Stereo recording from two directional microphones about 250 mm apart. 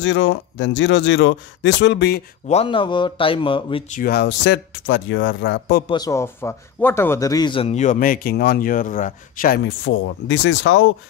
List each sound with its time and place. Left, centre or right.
0.0 s speech: left
2.4 s speech: left
4.0 s speech: left
5.9 s speech: centre; by 9.6 s left
9.7 s speech: left